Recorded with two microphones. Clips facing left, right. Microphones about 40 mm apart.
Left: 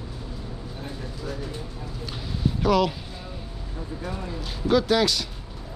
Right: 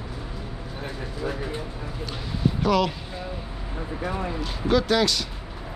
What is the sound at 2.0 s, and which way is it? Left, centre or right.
Speech, centre.